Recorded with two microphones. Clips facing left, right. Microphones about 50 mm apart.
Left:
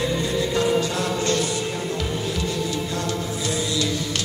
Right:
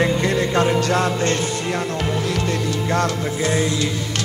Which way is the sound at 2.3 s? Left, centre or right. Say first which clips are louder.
Right 3 dB; right.